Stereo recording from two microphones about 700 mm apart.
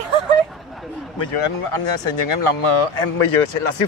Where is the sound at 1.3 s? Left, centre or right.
Left.